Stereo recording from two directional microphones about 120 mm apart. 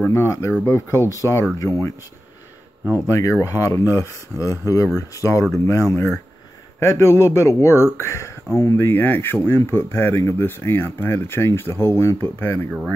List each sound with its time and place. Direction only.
0.1 s speech: 25° left (ahead or behind)
3.1 s speech: 25° left (ahead or behind)